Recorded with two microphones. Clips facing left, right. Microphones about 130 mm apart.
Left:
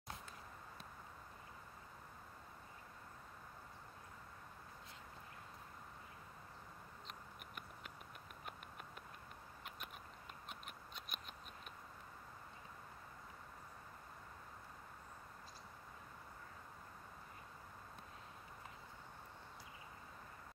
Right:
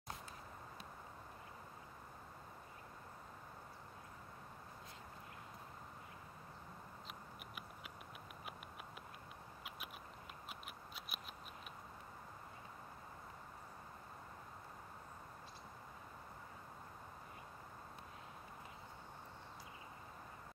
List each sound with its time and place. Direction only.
10.5 s scissors: 5° right (ahead or behind)